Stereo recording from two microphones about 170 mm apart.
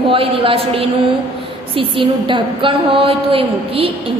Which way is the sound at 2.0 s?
30° right (ahead or behind).